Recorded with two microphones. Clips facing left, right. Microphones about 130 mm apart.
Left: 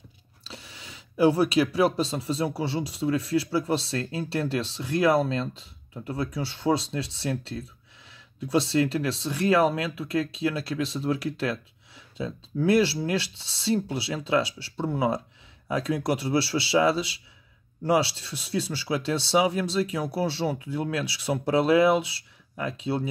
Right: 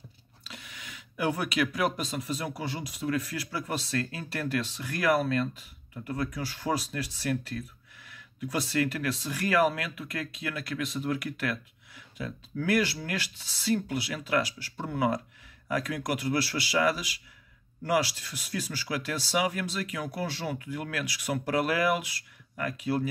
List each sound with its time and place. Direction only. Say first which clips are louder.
0.4 s speech: left 2 dB; 30° left (ahead or behind)